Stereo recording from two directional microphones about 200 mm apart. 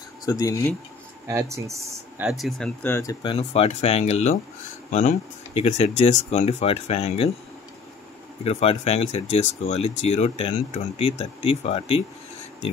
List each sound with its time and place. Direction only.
0.2 s speech: 20° left (ahead or behind)
1.2 s speech: 15° right (ahead or behind)
2.2 s speech: centre (ahead or behind); by 7.3 s 30° left (ahead or behind)
8.5 s speech: 30° left (ahead or behind)